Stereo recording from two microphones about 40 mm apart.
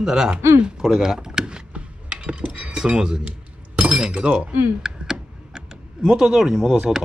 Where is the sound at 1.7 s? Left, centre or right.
Right.